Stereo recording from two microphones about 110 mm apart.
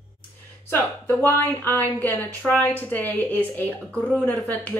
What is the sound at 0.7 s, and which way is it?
A woman's voice, 20° left (ahead or behind).